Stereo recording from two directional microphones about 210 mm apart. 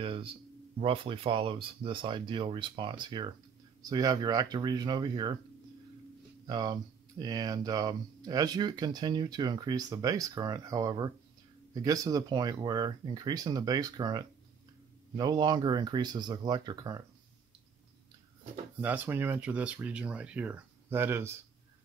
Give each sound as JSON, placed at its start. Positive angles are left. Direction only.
{"t": 0.0, "sound": "a sound", "side_deg": -25}
{"t": 0.7, "sound": "speech", "side_deg": -25}
{"t": 6.4, "sound": "speech", "side_deg": -20}
{"t": 18.8, "sound": "speech", "side_deg": -10}